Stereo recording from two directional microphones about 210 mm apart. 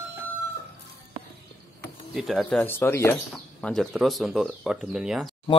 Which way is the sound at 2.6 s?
10° left (ahead or behind).